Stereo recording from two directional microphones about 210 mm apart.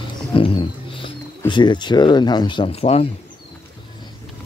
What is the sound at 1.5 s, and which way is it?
Speech, 20° left (ahead or behind).